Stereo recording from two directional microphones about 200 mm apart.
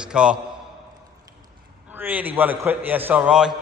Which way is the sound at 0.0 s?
5° right (ahead or behind).